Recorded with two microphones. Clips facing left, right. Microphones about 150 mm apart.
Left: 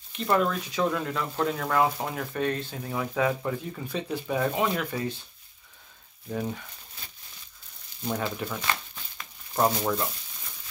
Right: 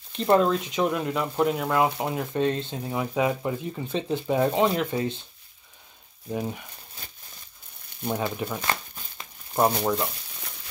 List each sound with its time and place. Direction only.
0.1 s speech: 25° right (ahead or behind)
6.2 s speech: 15° right (ahead or behind)
8.0 s speech: 15° right (ahead or behind)
9.2 s a sound: 15° right (ahead or behind)